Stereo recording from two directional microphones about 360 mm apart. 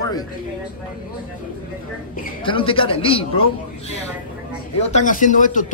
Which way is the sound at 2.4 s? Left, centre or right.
Centre.